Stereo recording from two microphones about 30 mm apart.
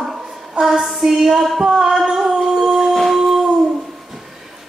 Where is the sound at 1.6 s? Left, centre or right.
Centre.